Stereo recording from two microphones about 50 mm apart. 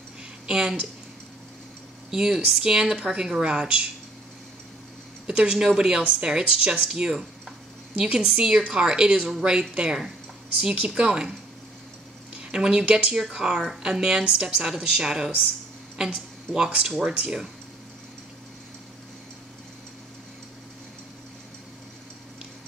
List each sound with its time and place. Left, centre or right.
0.5 s speech: centre
2.0 s speech: centre
5.2 s a woman's voice: centre
10.7 s a woman's voice: right
12.4 s speech: centre
16.5 s a woman's voice: centre